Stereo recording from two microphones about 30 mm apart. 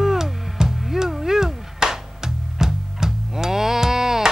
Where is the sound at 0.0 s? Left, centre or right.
Centre.